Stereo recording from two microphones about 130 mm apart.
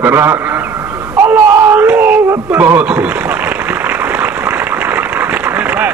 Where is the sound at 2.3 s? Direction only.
15° right (ahead or behind).